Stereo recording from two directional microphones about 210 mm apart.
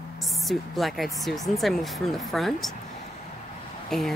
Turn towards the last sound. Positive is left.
turn(degrees=0)  # may be behind; listen again after turning